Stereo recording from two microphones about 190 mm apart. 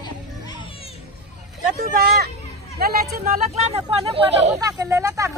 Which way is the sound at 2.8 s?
55° right (ahead or behind).